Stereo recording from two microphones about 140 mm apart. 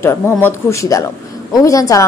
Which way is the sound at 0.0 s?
15° left (ahead or behind).